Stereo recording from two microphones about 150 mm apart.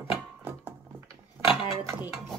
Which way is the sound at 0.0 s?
15° right (ahead or behind).